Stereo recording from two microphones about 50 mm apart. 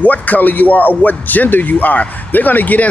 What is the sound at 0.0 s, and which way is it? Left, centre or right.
Speech, left.